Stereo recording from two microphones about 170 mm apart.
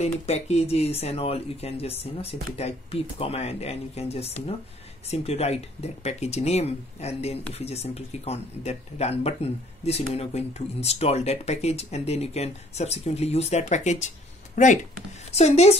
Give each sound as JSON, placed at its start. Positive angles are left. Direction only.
{"t": 0.0, "sound": "speech", "side_deg": 40}